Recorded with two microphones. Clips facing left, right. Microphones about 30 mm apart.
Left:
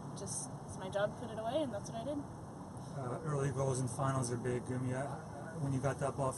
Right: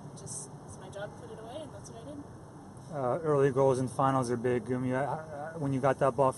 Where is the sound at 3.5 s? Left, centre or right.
Right.